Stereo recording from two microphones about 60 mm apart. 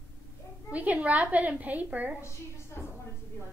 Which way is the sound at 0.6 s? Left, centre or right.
Right.